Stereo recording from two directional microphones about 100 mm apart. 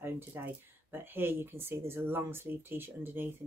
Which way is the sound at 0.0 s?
20° right (ahead or behind).